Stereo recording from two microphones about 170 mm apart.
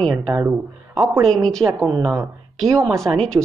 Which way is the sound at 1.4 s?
5° left (ahead or behind).